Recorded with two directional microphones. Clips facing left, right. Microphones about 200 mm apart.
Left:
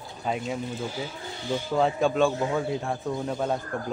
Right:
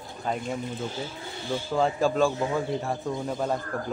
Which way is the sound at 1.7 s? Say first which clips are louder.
Even; centre (ahead or behind).